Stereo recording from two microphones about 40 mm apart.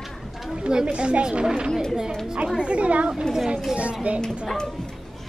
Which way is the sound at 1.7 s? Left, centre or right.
Centre.